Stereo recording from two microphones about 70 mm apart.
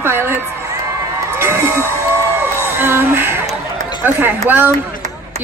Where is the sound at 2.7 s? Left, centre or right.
Right.